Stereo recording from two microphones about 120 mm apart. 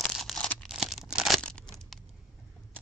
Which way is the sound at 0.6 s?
Centre (ahead or behind).